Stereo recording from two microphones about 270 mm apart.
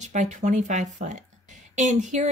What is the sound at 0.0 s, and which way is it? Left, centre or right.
Speech, right.